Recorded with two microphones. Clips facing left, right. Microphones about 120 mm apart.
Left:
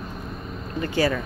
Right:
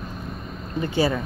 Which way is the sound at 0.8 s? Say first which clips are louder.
Even; 20° right (ahead or behind).